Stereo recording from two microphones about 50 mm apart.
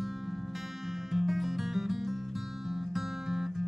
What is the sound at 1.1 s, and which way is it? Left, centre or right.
Music, centre.